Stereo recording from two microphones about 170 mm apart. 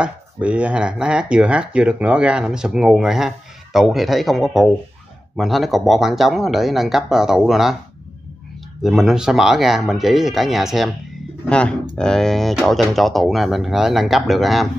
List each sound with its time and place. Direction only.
0.0 s speech: 5° right (ahead or behind)
8.8 s speech: centre (ahead or behind)